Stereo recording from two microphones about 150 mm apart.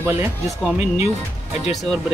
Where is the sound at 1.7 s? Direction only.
Centre (ahead or behind).